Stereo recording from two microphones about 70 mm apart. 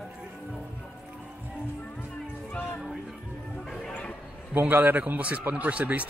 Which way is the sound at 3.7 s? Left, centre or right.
Centre.